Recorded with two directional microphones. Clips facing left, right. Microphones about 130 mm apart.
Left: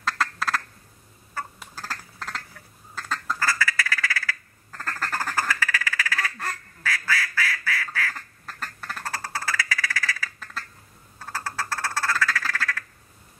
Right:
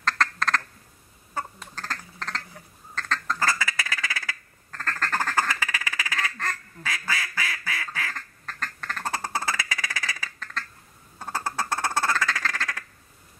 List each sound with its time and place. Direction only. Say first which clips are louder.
0.0 s quack: right 1 dB; 5° left (ahead or behind)
1.6 s quack: right 1 dB; 10° left (ahead or behind)
2.9 s duck: right 1 dB; 10° left (ahead or behind)
3.3 s duck: left 3 dB; 20° right (ahead or behind)
4.6 s quack: right 1 dB; 10° left (ahead or behind)
5.3 s quack: even; 20° right (ahead or behind)
8.1 s duck: right 1 dB; 10° left (ahead or behind)
9.0 s quack: right 3 dB; 20° right (ahead or behind)
11.1 s duck: right 2 dB; 20° right (ahead or behind)
12.5 s quack: left 2 dB; 20° right (ahead or behind)